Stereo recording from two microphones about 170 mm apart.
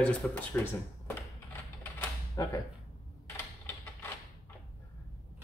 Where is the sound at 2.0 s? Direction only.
20° left (ahead or behind).